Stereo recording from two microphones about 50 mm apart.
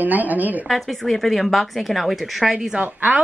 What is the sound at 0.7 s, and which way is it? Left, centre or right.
A woman's voice, centre.